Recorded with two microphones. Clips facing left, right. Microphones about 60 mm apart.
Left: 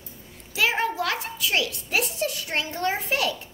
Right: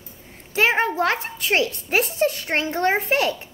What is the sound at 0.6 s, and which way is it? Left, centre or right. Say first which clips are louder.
A child's voice: right 5 dB; right.